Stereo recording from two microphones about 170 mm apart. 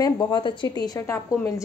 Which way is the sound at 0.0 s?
25° left (ahead or behind).